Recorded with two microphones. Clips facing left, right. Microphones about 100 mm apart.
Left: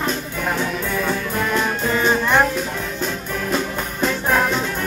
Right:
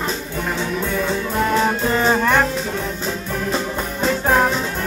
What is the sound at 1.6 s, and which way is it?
Music, 35° right (ahead or behind).